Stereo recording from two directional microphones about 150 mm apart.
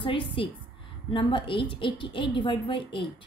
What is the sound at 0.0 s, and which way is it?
A woman's voice, 35° left (ahead or behind).